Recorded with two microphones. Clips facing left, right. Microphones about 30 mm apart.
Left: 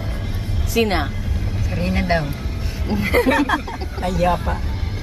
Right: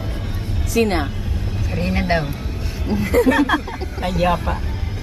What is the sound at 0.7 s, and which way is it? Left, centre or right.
Speech, centre.